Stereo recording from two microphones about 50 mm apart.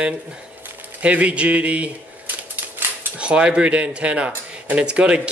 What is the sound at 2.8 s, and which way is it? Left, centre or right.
Cutlery, right.